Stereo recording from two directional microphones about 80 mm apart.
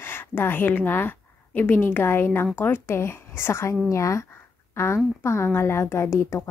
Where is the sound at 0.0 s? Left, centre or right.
Left.